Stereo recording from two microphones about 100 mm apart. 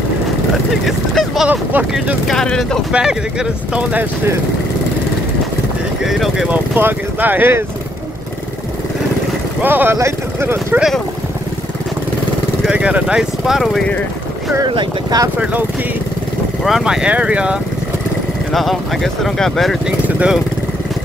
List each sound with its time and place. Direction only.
0.8 s speech: centre (ahead or behind)
1.5 s speech: 15° right (ahead or behind)
2.2 s speech: 5° left (ahead or behind)
2.9 s speech: 10° right (ahead or behind)
6.0 s speech: 5° right (ahead or behind)
6.5 s speech: 20° right (ahead or behind)
9.6 s speech: 20° right (ahead or behind)
12.6 s speech: 10° right (ahead or behind)
14.7 s speech: 55° right (ahead or behind)
15.3 s speech: 15° right (ahead or behind)
16.6 s speech: 5° right (ahead or behind)
18.5 s speech: centre (ahead or behind)